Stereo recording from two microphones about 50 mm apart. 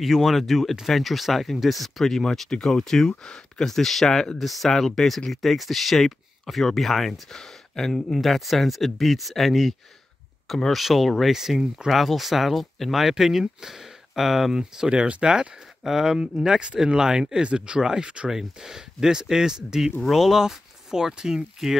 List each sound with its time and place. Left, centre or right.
0.0 s speech: centre
14.6 s speech: centre
18.3 s speech: centre